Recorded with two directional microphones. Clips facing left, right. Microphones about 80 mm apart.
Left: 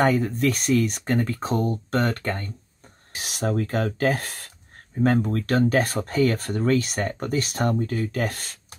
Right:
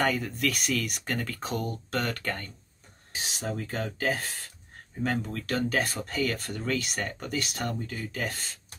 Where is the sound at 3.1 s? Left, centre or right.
Left.